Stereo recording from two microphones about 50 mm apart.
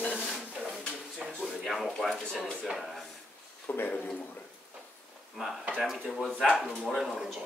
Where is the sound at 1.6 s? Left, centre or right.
Centre.